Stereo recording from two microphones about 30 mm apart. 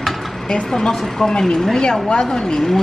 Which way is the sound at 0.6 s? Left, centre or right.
Left.